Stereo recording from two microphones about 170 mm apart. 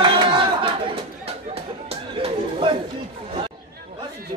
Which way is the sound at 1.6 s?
35° right (ahead or behind).